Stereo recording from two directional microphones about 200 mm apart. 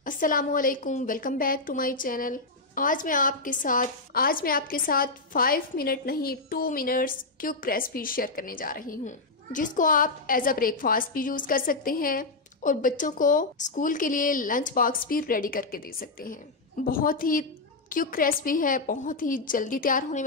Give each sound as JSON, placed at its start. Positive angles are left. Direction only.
{"t": 0.0, "sound": "a woman's voice", "side_deg": 45}